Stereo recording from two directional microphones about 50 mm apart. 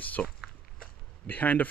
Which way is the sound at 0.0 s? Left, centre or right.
Left.